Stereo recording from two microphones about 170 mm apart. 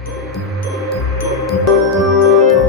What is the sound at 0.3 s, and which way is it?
Music, centre (ahead or behind).